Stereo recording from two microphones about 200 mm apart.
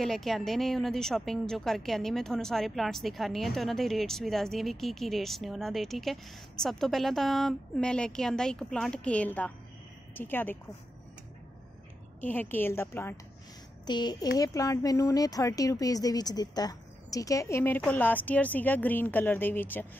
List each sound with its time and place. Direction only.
0.0 s a woman's voice: centre (ahead or behind)
12.2 s a child's voice: 10° left (ahead or behind)